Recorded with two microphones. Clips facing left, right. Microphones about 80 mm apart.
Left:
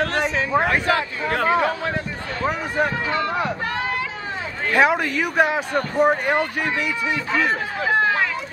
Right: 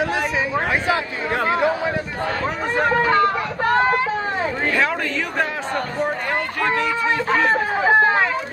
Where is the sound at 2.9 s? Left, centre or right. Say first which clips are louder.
Right 6 dB; right.